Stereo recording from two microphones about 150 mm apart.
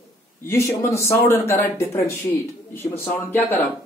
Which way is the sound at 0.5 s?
20° left (ahead or behind).